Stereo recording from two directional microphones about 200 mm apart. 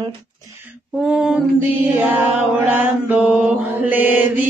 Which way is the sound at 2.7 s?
5° right (ahead or behind).